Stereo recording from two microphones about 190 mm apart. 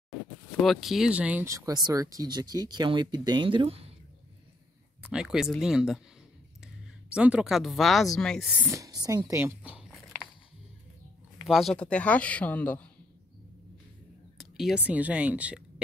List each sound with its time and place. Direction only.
0.6 s speech: centre (ahead or behind); by 3.9 s 30° right (ahead or behind)
5.0 s speech: 5° right (ahead or behind)
8.7 s a sound: 20° right (ahead or behind)
11.4 s speech: centre (ahead or behind)
14.4 s speech: centre (ahead or behind)